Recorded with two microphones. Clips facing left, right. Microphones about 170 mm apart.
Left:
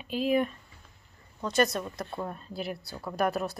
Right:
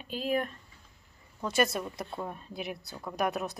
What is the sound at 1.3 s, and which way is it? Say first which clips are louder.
Speech: left 2 dB; 5° right (ahead or behind).